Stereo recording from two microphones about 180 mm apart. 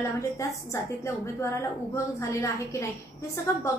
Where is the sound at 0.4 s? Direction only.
15° left (ahead or behind).